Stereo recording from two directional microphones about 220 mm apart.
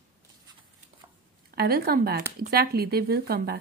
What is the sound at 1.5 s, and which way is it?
A woman's voice, 45° right (ahead or behind).